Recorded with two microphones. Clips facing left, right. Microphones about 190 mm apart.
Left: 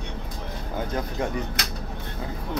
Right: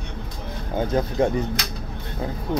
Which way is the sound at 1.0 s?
30° right (ahead or behind).